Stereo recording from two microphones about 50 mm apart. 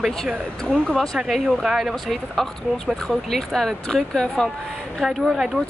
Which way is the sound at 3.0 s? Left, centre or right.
Centre.